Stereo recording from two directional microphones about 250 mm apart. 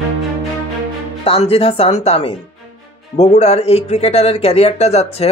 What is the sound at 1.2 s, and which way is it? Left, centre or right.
A man's voice, left.